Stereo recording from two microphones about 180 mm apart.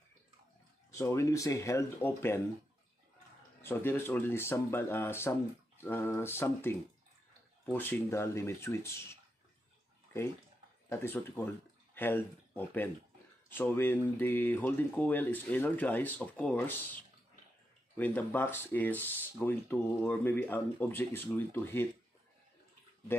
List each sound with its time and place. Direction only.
0.9 s speech: 15° left (ahead or behind)
3.6 s speech: 10° left (ahead or behind)
10.9 s speech: 15° left (ahead or behind)